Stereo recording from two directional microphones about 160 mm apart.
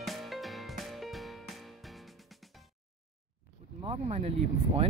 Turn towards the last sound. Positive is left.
turn(degrees=-40)  # may be behind; listen again after turning